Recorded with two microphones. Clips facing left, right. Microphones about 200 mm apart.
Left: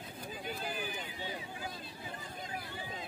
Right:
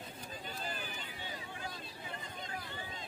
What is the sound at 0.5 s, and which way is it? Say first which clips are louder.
Run: left 5 dB; 10° left (ahead or behind).